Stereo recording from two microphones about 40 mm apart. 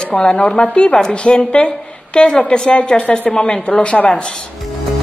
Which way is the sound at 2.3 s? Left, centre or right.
Centre.